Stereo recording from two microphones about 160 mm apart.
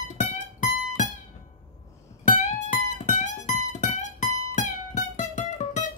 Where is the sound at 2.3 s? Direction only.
50° left (ahead or behind).